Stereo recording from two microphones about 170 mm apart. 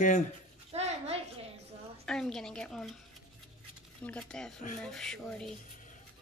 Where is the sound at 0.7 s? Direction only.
40° right (ahead or behind).